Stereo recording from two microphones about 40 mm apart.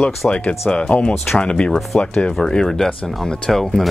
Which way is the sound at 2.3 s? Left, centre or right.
Centre.